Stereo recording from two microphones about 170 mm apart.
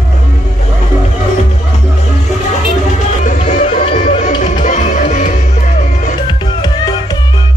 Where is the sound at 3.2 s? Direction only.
50° left (ahead or behind).